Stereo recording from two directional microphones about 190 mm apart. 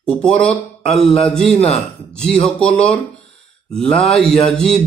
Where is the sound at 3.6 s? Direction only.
5° left (ahead or behind).